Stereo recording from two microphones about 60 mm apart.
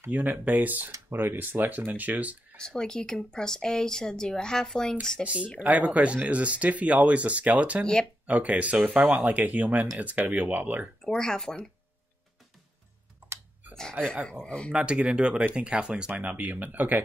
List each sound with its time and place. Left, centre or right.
0.1 s speech: right
2.5 s speech: centre
5.2 s speech: right
7.8 s speech: centre
8.3 s speech: right
11.0 s speech: centre
14.0 s speech: right
14.4 s speech: centre
14.7 s speech: centre